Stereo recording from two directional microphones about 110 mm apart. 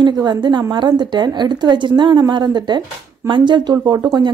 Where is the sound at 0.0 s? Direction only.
40° right (ahead or behind).